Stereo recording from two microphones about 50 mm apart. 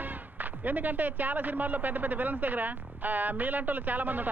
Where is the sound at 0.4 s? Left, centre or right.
Right.